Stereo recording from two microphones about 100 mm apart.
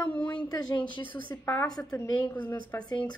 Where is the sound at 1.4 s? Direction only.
25° left (ahead or behind).